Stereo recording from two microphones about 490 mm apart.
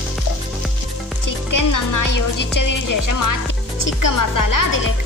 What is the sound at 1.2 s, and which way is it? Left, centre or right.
Music, left.